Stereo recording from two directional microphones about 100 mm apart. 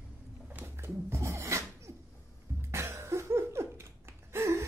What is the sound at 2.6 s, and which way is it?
Cough, 25° right (ahead or behind).